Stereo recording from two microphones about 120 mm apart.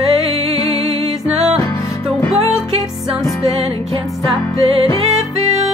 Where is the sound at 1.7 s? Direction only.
25° left (ahead or behind).